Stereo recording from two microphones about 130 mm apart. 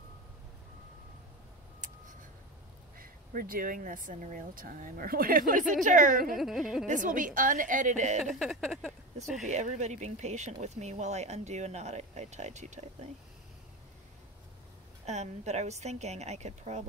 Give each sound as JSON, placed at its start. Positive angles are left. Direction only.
{"t": 3.0, "sound": "speech", "side_deg": -90}
{"t": 5.7, "sound": "a woman's voice", "side_deg": -75}
{"t": 6.3, "sound": "speech", "side_deg": 0}
{"t": 6.9, "sound": "a woman's voice", "side_deg": -85}
{"t": 8.2, "sound": "speech", "side_deg": 0}
{"t": 9.5, "sound": "speech", "side_deg": -65}
{"t": 15.0, "sound": "speech", "side_deg": -60}